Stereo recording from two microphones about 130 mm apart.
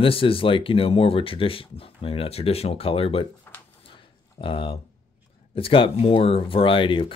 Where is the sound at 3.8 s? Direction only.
40° left (ahead or behind).